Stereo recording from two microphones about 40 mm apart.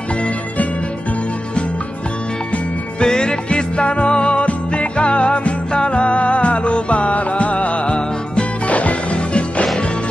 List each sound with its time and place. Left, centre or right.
3.0 s music: centre